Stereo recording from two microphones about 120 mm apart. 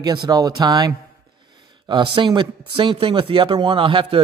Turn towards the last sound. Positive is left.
turn(degrees=-45)  # may be behind; listen again after turning